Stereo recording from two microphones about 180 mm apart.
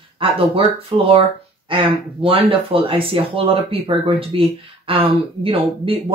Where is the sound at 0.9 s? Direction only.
30° right (ahead or behind).